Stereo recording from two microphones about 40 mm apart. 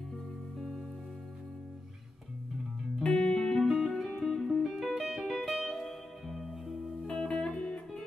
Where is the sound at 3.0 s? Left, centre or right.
Centre.